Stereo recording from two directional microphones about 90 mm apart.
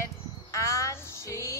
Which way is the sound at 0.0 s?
35° left (ahead or behind).